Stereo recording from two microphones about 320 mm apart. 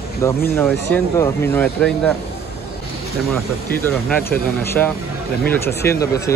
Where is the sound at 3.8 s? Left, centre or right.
Centre.